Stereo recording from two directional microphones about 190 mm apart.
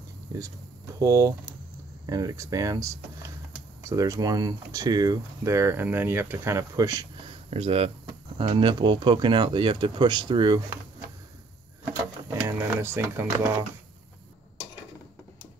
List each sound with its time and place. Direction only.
0.3 s speech: 20° right (ahead or behind)
7.4 s speech: 30° right (ahead or behind)
11.8 s a sound: 10° right (ahead or behind)